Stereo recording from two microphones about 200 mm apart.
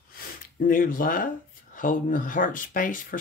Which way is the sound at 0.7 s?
45° left (ahead or behind).